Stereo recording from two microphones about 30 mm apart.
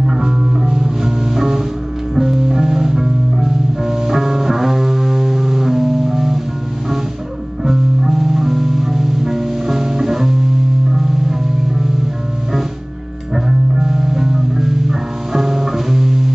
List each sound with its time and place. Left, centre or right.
0.2 s music: centre
7.6 s music: centre
13.5 s music: centre